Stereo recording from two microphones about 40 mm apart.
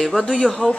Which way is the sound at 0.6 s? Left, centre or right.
Left.